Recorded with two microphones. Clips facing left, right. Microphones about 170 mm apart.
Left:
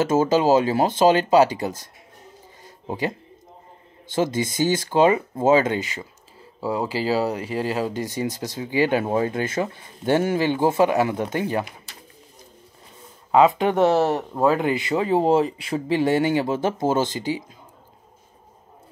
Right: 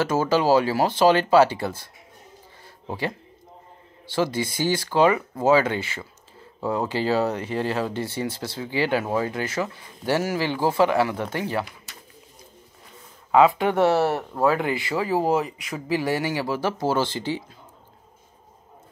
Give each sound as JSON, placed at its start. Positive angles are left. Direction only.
{"t": 0.0, "sound": "speech", "side_deg": 20}
{"t": 2.6, "sound": "a sound", "side_deg": 20}
{"t": 4.1, "sound": "speech", "side_deg": 20}
{"t": 13.3, "sound": "speech", "side_deg": 20}